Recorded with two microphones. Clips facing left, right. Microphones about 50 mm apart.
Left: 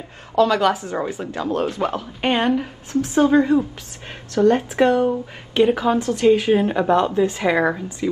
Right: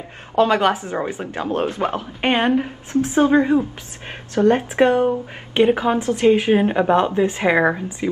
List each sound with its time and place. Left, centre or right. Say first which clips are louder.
0.4 s a woman's voice: even; right